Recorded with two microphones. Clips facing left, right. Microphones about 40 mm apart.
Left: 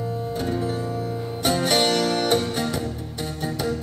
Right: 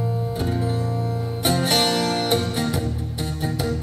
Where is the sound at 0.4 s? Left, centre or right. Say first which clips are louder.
Even; centre.